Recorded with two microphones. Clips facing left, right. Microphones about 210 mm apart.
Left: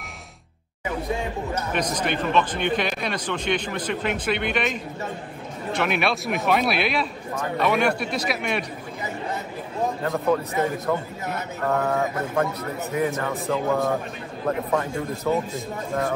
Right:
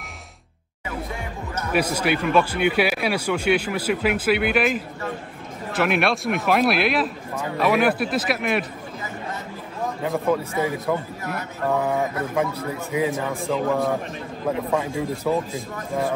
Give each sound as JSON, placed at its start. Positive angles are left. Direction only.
{"t": 1.7, "sound": "a man's voice", "side_deg": -5}
{"t": 10.0, "sound": "a man's voice", "side_deg": -5}
{"t": 11.6, "sound": "speech", "side_deg": -10}